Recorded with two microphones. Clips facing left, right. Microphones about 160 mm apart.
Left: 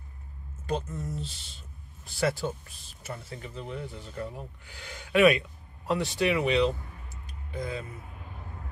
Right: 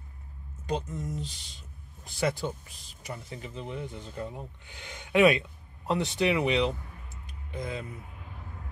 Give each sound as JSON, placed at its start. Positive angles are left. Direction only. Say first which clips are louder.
{"t": 0.7, "sound": "speech", "louder": "even", "side_deg": -15}